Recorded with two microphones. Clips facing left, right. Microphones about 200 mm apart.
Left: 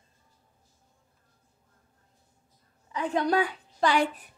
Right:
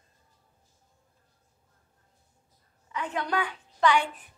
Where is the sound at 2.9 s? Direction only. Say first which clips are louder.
Left 5 dB; 35° left (ahead or behind).